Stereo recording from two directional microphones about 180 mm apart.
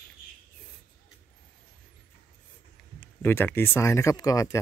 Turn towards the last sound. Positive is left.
turn(degrees=20)  # may be behind; listen again after turning